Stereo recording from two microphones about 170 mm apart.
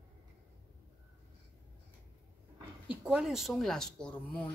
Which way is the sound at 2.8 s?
5° right (ahead or behind).